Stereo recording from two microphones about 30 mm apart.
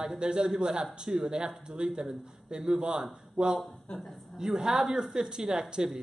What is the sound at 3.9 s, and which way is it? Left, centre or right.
Speech, left.